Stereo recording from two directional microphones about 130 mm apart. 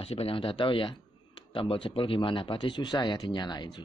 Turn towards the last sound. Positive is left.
turn(degrees=35)  # may be behind; listen again after turning